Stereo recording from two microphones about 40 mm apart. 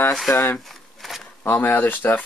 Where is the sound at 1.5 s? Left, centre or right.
Left.